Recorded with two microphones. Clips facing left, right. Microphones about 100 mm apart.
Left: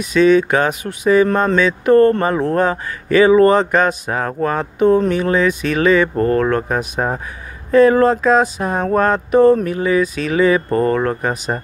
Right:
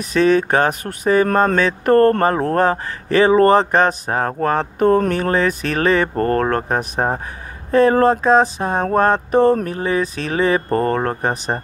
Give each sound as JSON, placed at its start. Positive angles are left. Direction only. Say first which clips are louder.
{"t": 0.0, "sound": "speech", "louder": "left 3 dB", "side_deg": -40}
{"t": 7.7, "sound": "mantra", "louder": "left 2 dB", "side_deg": -40}